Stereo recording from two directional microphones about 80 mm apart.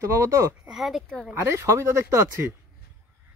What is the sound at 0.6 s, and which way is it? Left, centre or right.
Speech, centre.